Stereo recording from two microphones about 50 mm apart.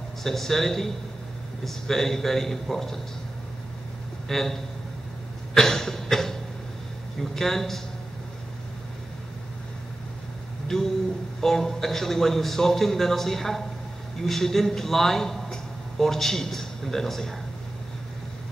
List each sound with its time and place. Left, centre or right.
0.2 s a man's voice: centre
4.3 s a man's voice: centre
5.5 s cough: centre
7.2 s speech: centre
11.4 s a man's voice: centre